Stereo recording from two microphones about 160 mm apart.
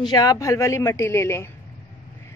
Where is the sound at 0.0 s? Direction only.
25° left (ahead or behind).